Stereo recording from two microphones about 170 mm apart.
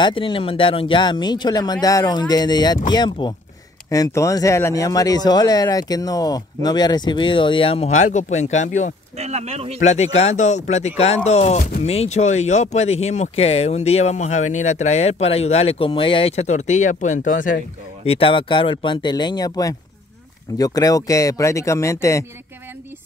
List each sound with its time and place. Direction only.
0.0 s speech: 30° left (ahead or behind)
9.1 s speech: 40° right (ahead or behind)
9.8 s speech: 40° left (ahead or behind)
18.0 s speech: 35° left (ahead or behind); by 22.2 s 15° left (ahead or behind)